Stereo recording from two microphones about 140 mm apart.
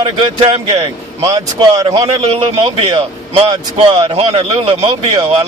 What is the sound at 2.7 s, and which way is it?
Speech, 40° right (ahead or behind).